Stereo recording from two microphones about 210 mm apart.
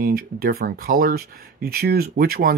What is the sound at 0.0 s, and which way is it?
Speech, 45° right (ahead or behind).